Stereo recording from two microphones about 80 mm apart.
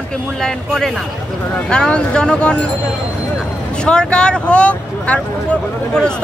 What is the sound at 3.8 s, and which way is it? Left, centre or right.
Speech, centre.